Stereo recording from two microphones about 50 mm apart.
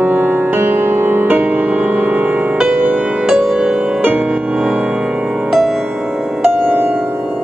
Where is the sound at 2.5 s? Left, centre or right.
Right.